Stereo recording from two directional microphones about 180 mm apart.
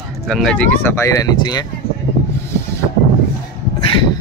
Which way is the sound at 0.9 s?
20° left (ahead or behind).